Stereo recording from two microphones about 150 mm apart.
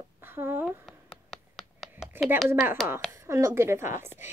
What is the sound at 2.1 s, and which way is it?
A woman's voice, 15° right (ahead or behind).